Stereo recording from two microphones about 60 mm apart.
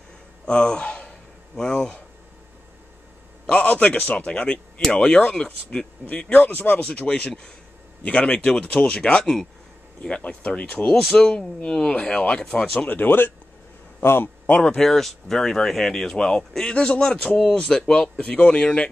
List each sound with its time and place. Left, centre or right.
0.5 s a sound: centre
3.4 s speech: left
10.0 s a man's voice: centre; by 14.3 s left
14.4 s speech: left
14.8 s speech: centre